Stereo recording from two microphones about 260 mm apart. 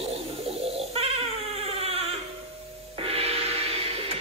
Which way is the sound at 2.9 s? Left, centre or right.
Right.